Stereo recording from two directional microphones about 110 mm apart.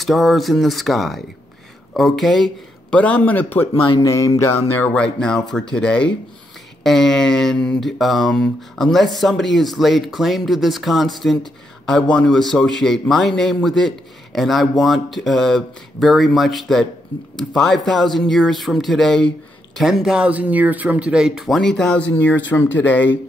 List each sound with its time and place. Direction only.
0.0 s a man's voice: centre (ahead or behind)
3.0 s speech: 15° left (ahead or behind)
3.7 s speech: 50° left (ahead or behind)
4.0 s music: 30° left (ahead or behind); by 5.4 s 5° left (ahead or behind)
5.5 s a man's voice: 5° left (ahead or behind)
22.1 s speech: 20° left (ahead or behind)